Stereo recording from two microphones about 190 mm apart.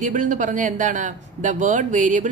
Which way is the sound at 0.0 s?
40° right (ahead or behind).